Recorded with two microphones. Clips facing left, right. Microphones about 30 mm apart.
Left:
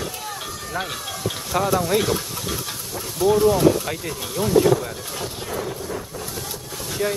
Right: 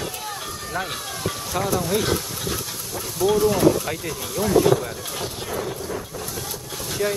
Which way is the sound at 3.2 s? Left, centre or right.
Left.